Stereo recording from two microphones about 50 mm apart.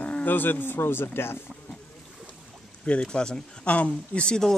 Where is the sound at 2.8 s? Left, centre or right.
Left.